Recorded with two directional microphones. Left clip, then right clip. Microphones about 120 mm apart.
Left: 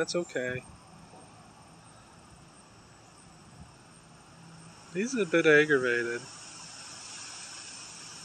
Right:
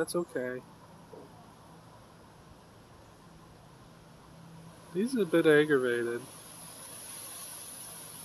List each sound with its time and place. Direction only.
0.0 s speech: 15° right (ahead or behind)
4.9 s speech: 20° right (ahead or behind)